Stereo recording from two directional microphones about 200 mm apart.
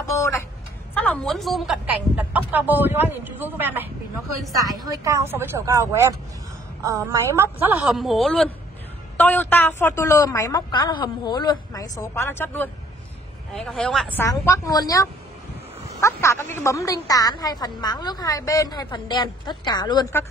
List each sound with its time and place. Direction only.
0.0 s a sound: 15° left (ahead or behind)
0.9 s a woman's voice: 5° left (ahead or behind)
14.2 s a woman's voice: 15° left (ahead or behind)